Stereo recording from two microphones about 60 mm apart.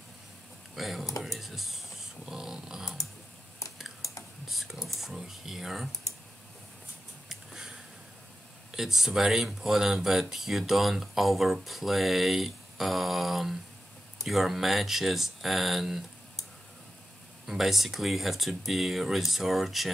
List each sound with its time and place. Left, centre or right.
0.7 s speech: centre
1.2 s typing: centre
2.2 s dog: centre
4.5 s speech: centre
8.7 s speech: centre
17.5 s speech: centre